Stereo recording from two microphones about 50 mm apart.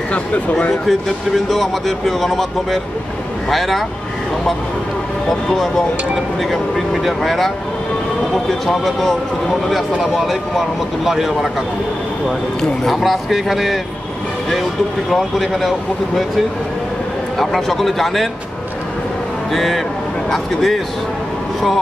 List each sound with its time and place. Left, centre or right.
0.1 s speech: left
0.8 s speech: centre
6.5 s speech: centre
12.9 s speech: centre
17.4 s speech: centre
19.5 s speech: centre